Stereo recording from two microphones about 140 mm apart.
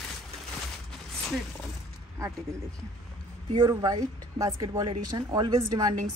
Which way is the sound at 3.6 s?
30° right (ahead or behind).